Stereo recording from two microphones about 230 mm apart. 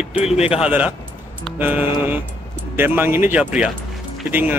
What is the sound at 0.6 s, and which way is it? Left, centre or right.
Speech, centre.